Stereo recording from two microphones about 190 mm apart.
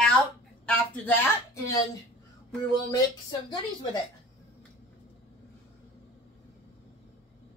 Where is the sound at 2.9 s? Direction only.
20° left (ahead or behind).